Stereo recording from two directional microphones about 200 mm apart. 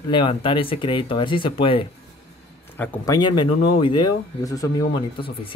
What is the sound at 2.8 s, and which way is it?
Speech, 20° left (ahead or behind).